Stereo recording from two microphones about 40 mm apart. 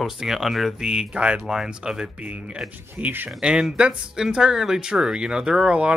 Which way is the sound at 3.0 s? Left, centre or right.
Right.